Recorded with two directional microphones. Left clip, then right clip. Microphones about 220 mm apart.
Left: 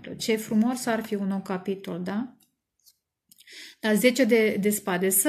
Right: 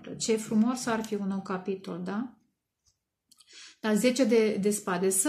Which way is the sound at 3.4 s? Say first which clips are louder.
Left 6 dB; 15° right (ahead or behind).